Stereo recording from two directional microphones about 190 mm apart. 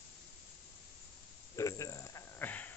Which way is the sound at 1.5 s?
15° left (ahead or behind).